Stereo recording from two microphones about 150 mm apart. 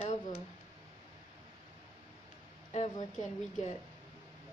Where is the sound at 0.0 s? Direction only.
55° left (ahead or behind).